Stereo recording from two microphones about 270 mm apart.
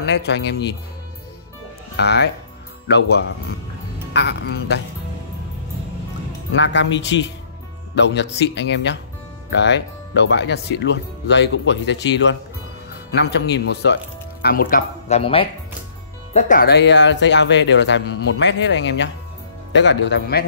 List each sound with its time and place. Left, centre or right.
0.0 s speech: left
2.0 s speech: left
4.1 s speech: left
6.5 s speech: left